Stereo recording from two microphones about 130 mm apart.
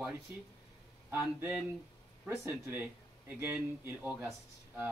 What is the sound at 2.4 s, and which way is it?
Speech, 15° right (ahead or behind).